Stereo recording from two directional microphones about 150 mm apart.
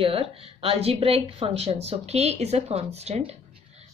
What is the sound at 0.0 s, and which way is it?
A woman's voice, 40° right (ahead or behind).